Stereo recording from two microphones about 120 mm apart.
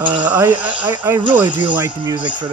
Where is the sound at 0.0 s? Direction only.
10° right (ahead or behind).